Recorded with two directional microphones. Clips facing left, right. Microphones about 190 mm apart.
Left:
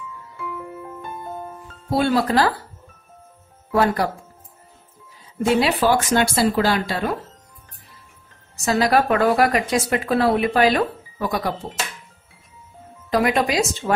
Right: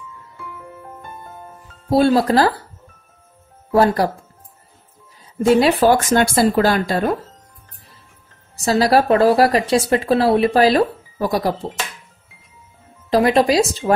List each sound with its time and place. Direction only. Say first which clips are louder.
1.9 s speech: right 5 dB; 35° right (ahead or behind)
3.7 s speech: right 4 dB; 35° right (ahead or behind)
5.5 s speech: right 5 dB; 45° right (ahead or behind)
8.6 s speech: right 3 dB; 35° right (ahead or behind)
13.1 s speech: right 5 dB; 30° right (ahead or behind)